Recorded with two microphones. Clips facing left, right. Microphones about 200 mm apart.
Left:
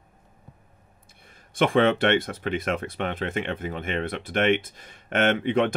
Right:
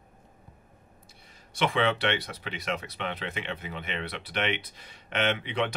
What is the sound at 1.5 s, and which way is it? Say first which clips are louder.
Speech: left 6 dB; 50° left (ahead or behind).